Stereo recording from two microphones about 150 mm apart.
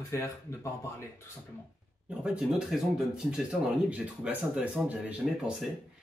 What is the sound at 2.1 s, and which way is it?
Speech, 5° right (ahead or behind).